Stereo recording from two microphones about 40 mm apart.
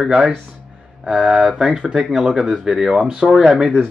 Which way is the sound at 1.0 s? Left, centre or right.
Centre.